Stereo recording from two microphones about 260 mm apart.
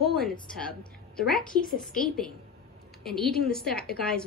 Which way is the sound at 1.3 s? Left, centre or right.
Left.